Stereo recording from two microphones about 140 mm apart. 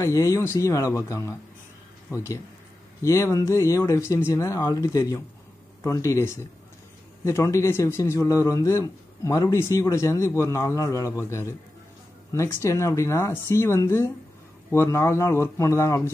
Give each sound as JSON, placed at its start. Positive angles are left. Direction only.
{"t": 0.0, "sound": "speech", "side_deg": 20}